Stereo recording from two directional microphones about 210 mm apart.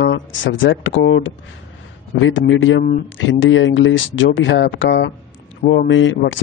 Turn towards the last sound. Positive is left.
turn(degrees=60)  # may be behind; listen again after turning